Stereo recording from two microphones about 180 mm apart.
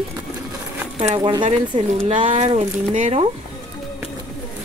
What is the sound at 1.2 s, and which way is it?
Speech, 20° right (ahead or behind).